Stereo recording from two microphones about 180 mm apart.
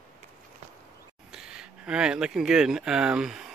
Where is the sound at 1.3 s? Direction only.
5° right (ahead or behind).